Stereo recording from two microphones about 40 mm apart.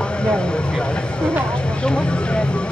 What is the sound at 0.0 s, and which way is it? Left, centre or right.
Speech, left.